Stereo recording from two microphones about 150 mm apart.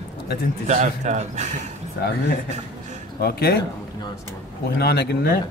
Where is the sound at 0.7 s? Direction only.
50° right (ahead or behind).